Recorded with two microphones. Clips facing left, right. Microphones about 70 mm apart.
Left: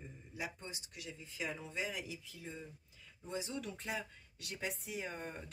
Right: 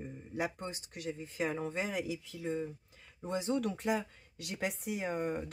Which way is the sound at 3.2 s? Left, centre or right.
Right.